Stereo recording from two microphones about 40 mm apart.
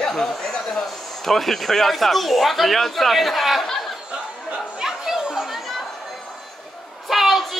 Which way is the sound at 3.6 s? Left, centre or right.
Centre.